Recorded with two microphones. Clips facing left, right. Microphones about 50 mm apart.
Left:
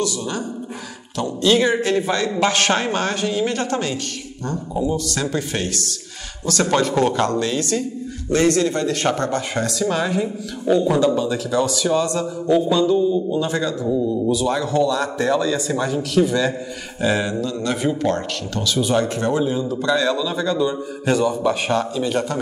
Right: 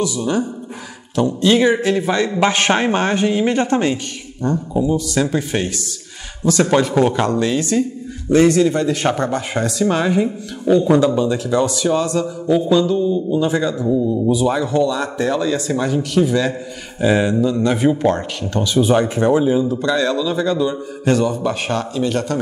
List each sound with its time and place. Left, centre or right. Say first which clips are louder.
0.0 s a man's voice: right 5 dB; centre
4.5 s a man's voice: right 4 dB; centre